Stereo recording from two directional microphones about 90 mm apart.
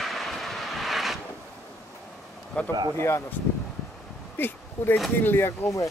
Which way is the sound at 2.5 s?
15° left (ahead or behind).